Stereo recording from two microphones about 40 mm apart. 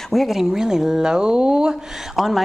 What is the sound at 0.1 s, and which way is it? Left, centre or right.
Speech, centre.